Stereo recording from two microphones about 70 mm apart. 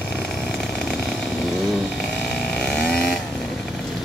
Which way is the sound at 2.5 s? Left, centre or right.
Centre.